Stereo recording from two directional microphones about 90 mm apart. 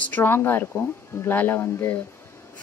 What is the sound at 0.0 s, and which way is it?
A woman's voice, 20° left (ahead or behind).